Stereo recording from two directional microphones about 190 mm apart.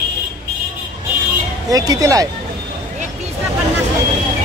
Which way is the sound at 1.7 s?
20° right (ahead or behind).